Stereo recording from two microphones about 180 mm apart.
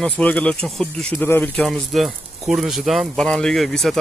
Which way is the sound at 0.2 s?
10° left (ahead or behind).